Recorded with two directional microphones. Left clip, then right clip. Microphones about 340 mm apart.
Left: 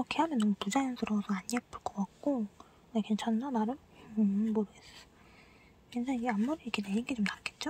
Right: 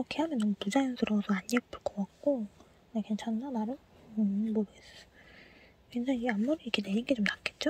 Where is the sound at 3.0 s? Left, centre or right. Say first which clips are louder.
Left 2 dB; centre.